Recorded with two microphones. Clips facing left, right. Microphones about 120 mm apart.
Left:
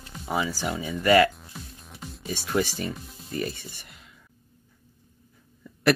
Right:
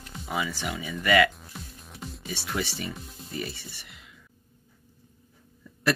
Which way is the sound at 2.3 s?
45° left (ahead or behind).